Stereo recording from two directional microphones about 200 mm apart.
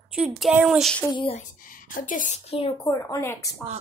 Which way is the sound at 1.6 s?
45° left (ahead or behind).